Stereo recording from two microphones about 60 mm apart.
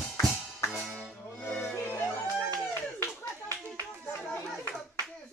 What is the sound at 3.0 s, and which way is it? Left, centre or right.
Clapping, left.